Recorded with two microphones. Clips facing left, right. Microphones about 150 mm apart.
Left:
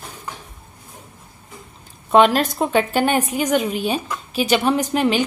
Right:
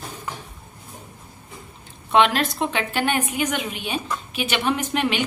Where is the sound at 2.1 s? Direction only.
40° left (ahead or behind).